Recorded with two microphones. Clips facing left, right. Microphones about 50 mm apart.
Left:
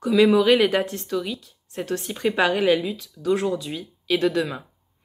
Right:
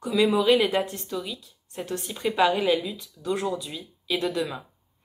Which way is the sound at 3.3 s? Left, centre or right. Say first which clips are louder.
Left 5 dB; left.